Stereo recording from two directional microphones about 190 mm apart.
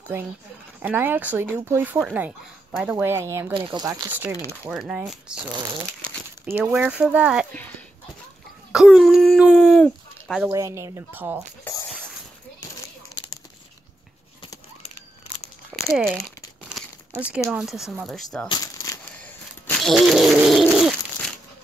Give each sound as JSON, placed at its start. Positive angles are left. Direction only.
{"t": 0.8, "sound": "speech", "side_deg": -10}
{"t": 4.1, "sound": "speech", "side_deg": -10}
{"t": 6.5, "sound": "speech", "side_deg": -5}
{"t": 8.7, "sound": "speech", "side_deg": 0}
{"t": 10.5, "sound": "speech", "side_deg": -15}
{"t": 15.7, "sound": "crumpling", "side_deg": 5}
{"t": 16.6, "sound": "crumpling", "side_deg": -5}
{"t": 17.5, "sound": "speech", "side_deg": -5}
{"t": 18.5, "sound": "a sound", "side_deg": 20}
{"t": 19.1, "sound": "a sound", "side_deg": 5}